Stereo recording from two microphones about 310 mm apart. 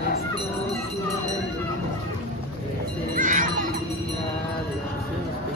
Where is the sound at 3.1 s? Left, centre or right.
Right.